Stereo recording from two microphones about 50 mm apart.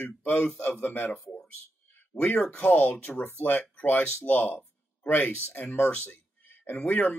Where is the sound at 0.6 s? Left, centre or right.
Left.